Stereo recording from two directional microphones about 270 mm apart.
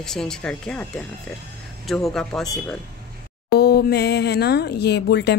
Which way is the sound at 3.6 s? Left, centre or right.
Left.